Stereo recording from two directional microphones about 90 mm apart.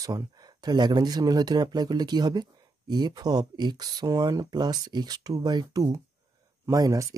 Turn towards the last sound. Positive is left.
turn(degrees=-40)  # may be behind; listen again after turning